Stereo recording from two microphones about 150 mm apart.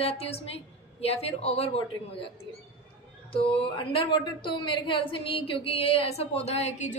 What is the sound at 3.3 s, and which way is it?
A woman's voice, 35° left (ahead or behind).